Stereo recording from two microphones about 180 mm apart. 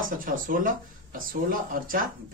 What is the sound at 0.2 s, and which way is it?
A man's voice, 50° right (ahead or behind).